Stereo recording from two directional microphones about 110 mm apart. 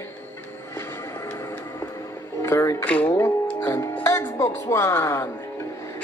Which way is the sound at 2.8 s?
10° left (ahead or behind).